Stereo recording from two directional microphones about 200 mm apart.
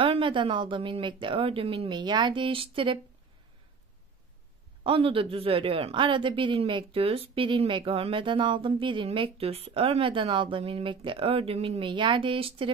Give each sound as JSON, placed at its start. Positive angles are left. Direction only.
{"t": 0.0, "sound": "a woman's voice", "side_deg": -25}
{"t": 4.8, "sound": "a woman's voice", "side_deg": -25}